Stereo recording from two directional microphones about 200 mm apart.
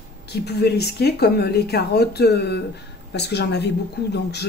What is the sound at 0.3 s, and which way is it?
Speech, 55° left (ahead or behind).